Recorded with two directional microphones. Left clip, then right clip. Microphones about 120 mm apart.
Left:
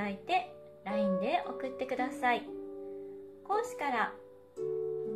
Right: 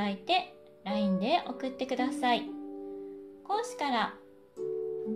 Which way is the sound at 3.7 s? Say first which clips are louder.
Right 2 dB; 40° right (ahead or behind).